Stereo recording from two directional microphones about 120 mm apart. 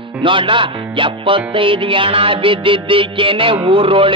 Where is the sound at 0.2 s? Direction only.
45° right (ahead or behind).